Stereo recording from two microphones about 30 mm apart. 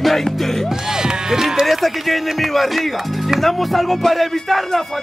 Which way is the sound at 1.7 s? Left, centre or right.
Centre.